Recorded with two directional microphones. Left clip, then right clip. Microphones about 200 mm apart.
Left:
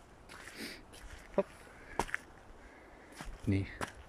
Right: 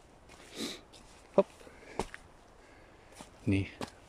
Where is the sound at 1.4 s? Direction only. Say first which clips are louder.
Right 7 dB; 15° right (ahead or behind).